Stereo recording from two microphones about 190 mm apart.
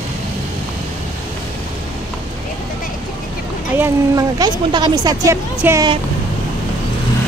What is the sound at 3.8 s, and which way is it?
Speech, 20° right (ahead or behind).